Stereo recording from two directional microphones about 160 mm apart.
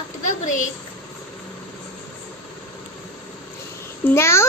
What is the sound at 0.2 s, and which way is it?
Speech, 55° left (ahead or behind).